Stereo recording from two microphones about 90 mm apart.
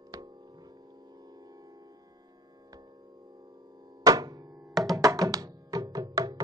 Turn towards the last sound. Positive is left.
turn(degrees=-45)  # may be behind; listen again after turning